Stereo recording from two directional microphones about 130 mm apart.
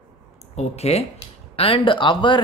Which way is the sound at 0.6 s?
55° left (ahead or behind).